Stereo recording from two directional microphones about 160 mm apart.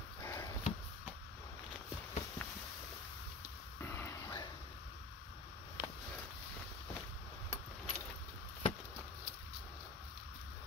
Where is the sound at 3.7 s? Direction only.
15° left (ahead or behind).